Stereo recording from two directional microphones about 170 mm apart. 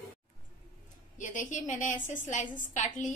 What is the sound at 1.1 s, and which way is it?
A woman's voice, 50° left (ahead or behind).